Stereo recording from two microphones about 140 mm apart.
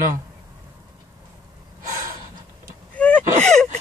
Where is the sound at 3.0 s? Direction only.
10° left (ahead or behind).